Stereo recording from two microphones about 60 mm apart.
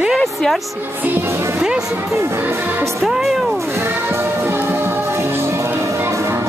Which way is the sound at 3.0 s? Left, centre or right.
Centre.